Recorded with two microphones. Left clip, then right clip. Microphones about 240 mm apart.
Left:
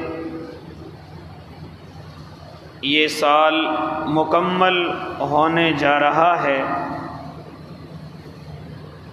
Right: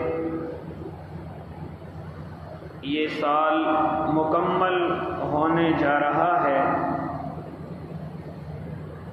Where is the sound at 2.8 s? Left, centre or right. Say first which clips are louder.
Left 8 dB; left.